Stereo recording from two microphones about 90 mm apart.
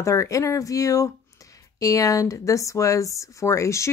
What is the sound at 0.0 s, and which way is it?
A woman's voice, 35° left (ahead or behind).